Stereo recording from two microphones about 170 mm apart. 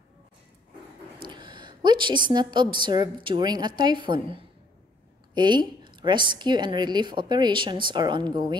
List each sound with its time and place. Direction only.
1.2 s a woman's voice: 30° right (ahead or behind)